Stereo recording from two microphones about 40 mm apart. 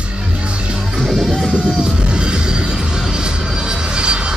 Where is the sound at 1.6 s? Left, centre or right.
Right.